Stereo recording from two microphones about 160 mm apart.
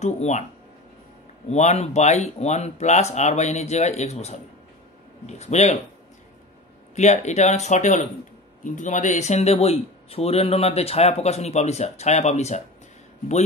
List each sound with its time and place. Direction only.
0.0 s speech: 45° left (ahead or behind)
1.5 s speech: 45° left (ahead or behind)
7.0 s speech: 45° left (ahead or behind)